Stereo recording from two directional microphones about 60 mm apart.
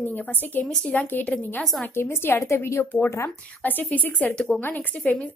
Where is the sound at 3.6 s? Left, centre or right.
Left.